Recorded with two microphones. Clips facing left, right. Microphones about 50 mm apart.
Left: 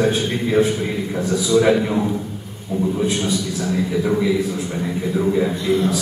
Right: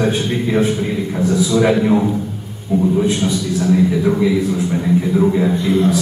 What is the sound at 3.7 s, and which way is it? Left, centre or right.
Speech, centre.